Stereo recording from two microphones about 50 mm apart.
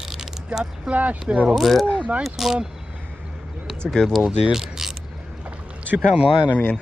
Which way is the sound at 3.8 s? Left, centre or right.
Centre.